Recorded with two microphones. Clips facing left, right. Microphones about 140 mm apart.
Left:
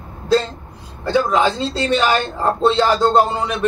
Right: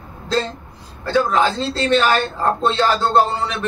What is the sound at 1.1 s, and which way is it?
Speech, 15° left (ahead or behind).